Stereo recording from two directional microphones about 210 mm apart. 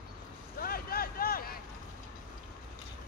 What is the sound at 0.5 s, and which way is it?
Vehicle, 45° left (ahead or behind).